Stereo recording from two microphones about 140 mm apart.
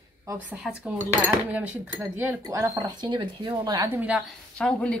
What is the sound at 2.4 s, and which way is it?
Speech, 25° right (ahead or behind).